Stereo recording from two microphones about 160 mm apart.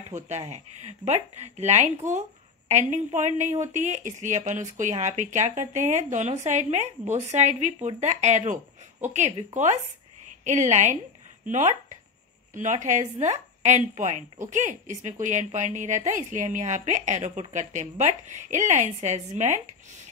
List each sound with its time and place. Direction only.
0.1 s a woman's voice: 45° right (ahead or behind)